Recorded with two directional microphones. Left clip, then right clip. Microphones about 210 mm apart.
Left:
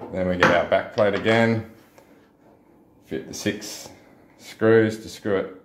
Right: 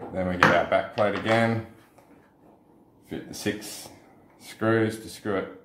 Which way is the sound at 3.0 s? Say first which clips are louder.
Left 4 dB; 30° left (ahead or behind).